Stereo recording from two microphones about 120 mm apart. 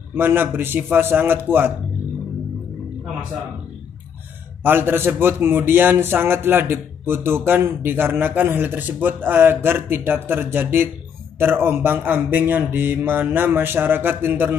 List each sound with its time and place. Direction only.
0.1 s a man's voice: 20° right (ahead or behind)
4.6 s a man's voice: 20° right (ahead or behind)